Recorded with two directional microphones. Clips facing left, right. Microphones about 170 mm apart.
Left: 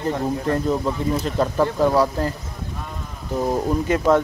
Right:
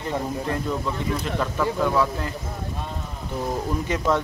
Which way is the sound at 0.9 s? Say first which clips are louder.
Left 4 dB; 40° left (ahead or behind).